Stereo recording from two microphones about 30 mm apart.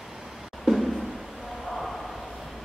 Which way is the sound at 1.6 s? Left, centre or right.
Centre.